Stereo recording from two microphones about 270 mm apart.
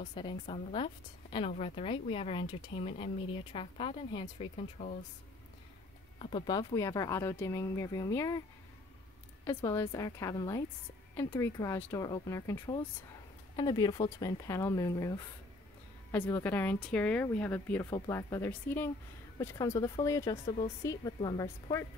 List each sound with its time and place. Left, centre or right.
0.0 s speech: centre
6.1 s speech: centre
9.4 s speech: centre